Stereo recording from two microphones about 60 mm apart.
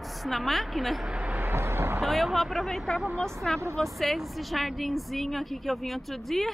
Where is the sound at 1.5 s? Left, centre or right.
Right.